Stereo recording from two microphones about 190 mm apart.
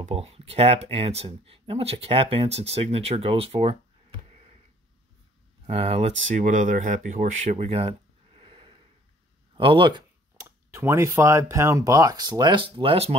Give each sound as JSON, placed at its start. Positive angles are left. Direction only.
{"t": 0.0, "sound": "speech", "side_deg": -30}
{"t": 4.3, "sound": "a sound", "side_deg": -35}
{"t": 5.7, "sound": "speech", "side_deg": -30}